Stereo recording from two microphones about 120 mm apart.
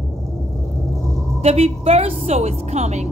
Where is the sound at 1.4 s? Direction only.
60° right (ahead or behind).